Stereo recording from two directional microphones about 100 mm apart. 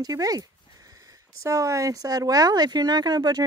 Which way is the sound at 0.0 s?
40° right (ahead or behind).